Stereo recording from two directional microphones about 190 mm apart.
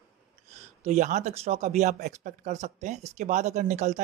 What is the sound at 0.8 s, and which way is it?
Speech, 40° right (ahead or behind).